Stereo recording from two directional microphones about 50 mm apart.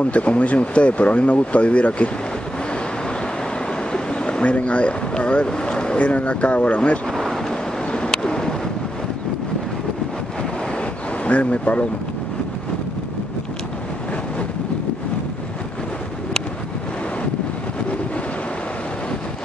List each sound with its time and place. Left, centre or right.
0.0 s speech: left
3.9 s speech: centre
7.1 s vehicle: centre
7.9 s a sound: centre
11.2 s speech: left